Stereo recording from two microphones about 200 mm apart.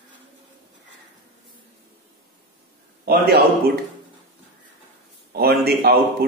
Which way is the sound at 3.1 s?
50° right (ahead or behind).